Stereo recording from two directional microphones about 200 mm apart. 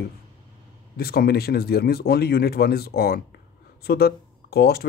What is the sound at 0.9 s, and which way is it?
Speech, 50° left (ahead or behind).